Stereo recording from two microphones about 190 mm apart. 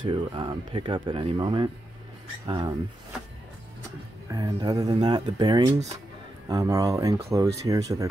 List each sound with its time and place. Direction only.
0.1 s speech: 25° right (ahead or behind)
4.3 s speech: 20° right (ahead or behind)